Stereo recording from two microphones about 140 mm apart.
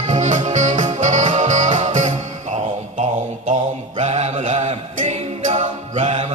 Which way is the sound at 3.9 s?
50° right (ahead or behind).